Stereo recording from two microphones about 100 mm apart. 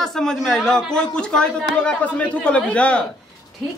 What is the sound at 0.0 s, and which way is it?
A man's voice, 5° left (ahead or behind).